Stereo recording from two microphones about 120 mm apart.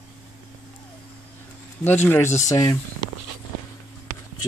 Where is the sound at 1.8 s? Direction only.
15° left (ahead or behind).